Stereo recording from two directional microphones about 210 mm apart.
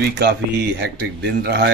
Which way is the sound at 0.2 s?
50° right (ahead or behind).